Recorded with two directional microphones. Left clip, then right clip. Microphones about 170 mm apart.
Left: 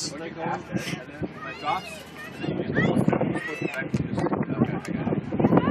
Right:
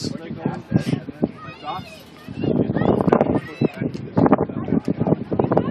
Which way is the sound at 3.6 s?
10° left (ahead or behind).